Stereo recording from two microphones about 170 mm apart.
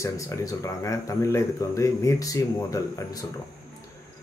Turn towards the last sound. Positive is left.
turn(degrees=20)  # may be behind; listen again after turning